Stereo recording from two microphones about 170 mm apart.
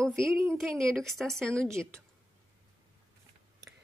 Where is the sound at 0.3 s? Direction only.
15° right (ahead or behind).